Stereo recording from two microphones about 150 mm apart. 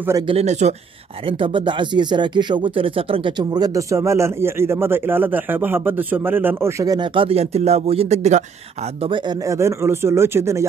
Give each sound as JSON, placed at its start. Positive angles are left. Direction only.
{"t": 0.3, "sound": "speech", "side_deg": -45}
{"t": 1.2, "sound": "speech", "side_deg": -35}
{"t": 9.0, "sound": "speech", "side_deg": -30}